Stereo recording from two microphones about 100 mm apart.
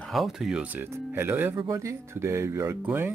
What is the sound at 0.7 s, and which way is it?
Speech, 20° right (ahead or behind).